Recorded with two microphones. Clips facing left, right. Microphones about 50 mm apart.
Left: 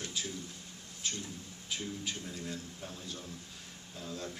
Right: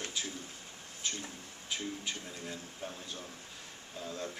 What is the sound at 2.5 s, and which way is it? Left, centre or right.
Speech, right.